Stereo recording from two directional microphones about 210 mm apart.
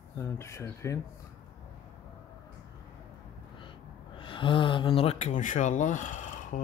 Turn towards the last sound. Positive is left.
turn(degrees=40)  # may be behind; listen again after turning